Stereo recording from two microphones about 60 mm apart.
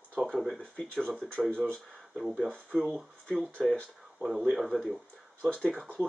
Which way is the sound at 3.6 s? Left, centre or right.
Centre.